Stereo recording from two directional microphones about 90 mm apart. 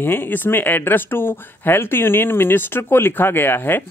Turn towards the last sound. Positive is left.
turn(degrees=25)  # may be behind; listen again after turning